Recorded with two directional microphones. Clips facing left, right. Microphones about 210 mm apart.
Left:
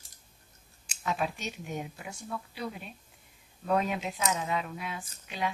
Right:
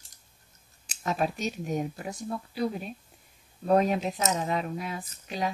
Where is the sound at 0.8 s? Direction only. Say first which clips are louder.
Right 3 dB; 40° right (ahead or behind).